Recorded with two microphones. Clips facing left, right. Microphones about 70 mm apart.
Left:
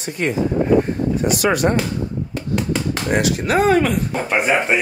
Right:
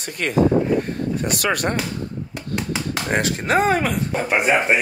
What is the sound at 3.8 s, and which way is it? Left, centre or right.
Speech, centre.